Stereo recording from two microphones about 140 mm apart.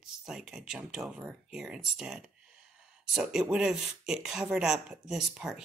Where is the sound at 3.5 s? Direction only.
5° right (ahead or behind).